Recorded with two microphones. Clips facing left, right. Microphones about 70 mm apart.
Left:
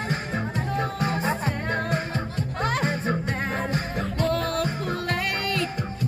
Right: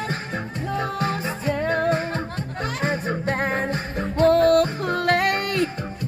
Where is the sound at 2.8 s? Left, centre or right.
Centre.